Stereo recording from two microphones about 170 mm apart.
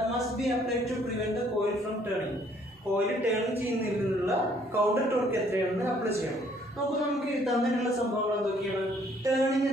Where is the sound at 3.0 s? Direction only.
Centre (ahead or behind).